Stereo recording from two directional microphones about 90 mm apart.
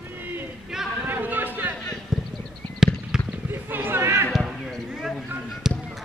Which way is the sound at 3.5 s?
25° right (ahead or behind).